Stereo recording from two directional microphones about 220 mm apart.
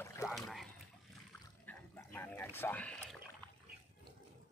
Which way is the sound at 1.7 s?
10° left (ahead or behind).